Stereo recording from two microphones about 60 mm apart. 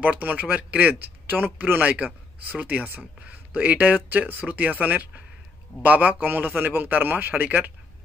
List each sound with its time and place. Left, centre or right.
0.1 s speech: right